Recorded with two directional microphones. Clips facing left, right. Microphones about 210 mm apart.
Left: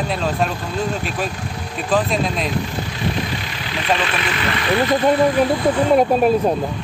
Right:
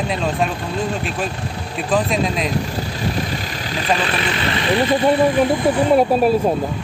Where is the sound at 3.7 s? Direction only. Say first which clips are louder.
Even; 35° right (ahead or behind).